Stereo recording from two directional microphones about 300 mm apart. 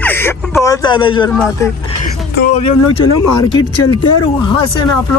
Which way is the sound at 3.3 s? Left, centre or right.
Centre.